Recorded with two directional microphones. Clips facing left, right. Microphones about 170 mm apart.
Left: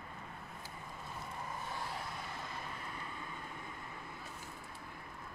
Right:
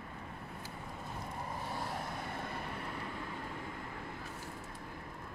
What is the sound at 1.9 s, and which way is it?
Vehicle, 55° right (ahead or behind).